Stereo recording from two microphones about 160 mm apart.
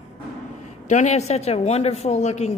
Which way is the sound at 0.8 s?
45° left (ahead or behind).